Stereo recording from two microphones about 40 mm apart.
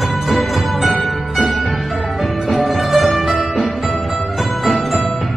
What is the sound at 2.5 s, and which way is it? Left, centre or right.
Music, centre.